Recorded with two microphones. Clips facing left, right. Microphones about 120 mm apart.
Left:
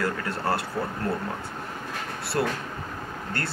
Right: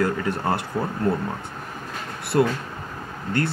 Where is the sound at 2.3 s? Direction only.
25° right (ahead or behind).